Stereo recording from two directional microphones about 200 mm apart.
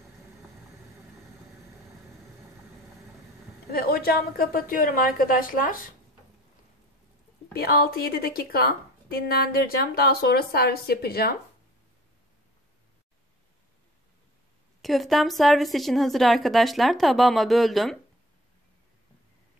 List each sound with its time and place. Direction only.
3.7 s a woman's voice: 50° left (ahead or behind)
7.5 s a woman's voice: 50° left (ahead or behind)
14.8 s a woman's voice: centre (ahead or behind)